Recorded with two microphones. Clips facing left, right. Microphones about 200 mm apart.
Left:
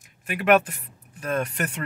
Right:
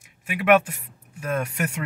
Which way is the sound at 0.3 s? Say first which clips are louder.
Right 1 dB; 5° right (ahead or behind).